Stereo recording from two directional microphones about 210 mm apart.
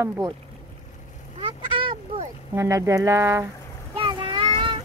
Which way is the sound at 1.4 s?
25° right (ahead or behind).